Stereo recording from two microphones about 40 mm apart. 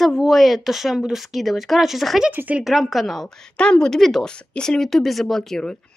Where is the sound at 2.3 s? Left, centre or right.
Right.